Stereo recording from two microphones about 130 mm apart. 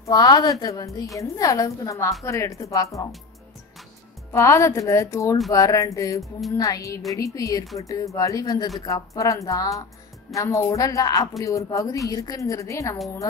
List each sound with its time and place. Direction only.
0.0 s speech: 30° left (ahead or behind)
4.3 s speech: 25° left (ahead or behind)